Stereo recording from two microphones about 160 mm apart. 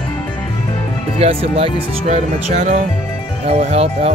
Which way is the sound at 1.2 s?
40° right (ahead or behind).